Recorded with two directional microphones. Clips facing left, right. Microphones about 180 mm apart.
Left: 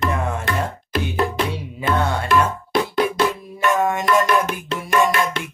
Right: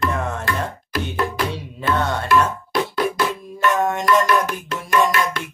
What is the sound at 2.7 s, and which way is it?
Music, 25° left (ahead or behind).